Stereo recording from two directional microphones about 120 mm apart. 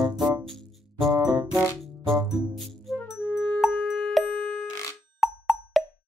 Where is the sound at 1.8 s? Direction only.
Centre (ahead or behind).